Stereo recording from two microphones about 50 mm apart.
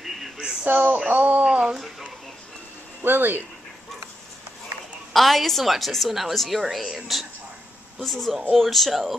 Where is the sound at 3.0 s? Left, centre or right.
Right.